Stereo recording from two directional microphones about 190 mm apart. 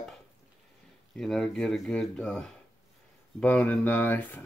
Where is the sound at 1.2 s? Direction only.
5° left (ahead or behind).